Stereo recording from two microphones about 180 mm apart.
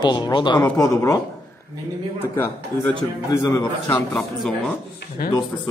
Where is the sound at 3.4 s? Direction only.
20° left (ahead or behind).